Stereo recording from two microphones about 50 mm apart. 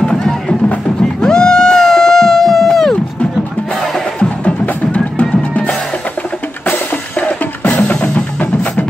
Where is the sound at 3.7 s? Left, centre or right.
Centre.